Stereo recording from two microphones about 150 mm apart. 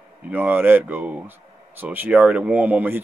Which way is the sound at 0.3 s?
10° right (ahead or behind).